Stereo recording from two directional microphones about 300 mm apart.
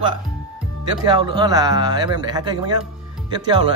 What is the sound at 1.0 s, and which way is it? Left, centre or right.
A man's voice, centre.